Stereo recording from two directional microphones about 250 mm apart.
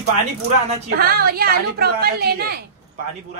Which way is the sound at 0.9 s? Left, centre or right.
Right.